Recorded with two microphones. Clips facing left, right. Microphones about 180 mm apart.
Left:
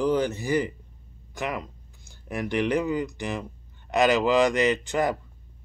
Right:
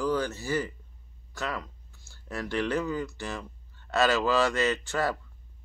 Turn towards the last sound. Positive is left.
turn(degrees=15)  # may be behind; listen again after turning